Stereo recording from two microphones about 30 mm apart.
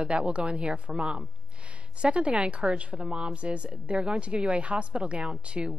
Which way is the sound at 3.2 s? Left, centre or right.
Right.